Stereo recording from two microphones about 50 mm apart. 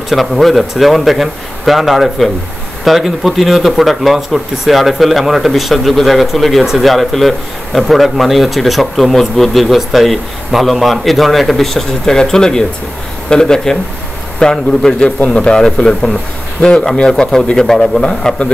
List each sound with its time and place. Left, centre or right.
0.1 s speech: centre
15.0 s speech: left; by 18.0 s centre
18.0 s speech: left